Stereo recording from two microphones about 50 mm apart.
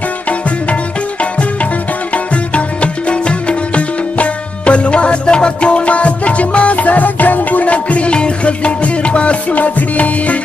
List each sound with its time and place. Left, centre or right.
2.5 s music: left